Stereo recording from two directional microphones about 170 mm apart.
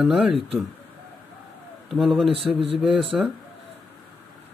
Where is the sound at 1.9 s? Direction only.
Centre (ahead or behind).